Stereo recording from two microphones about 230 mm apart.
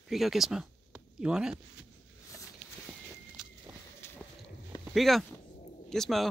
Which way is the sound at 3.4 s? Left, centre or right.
Centre.